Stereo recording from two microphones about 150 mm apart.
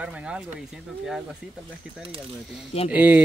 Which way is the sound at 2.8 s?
10° right (ahead or behind).